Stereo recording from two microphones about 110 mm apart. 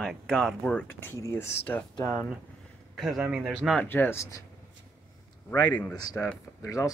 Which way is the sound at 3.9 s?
20° left (ahead or behind).